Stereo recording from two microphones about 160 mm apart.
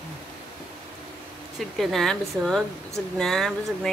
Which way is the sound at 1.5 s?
Centre (ahead or behind).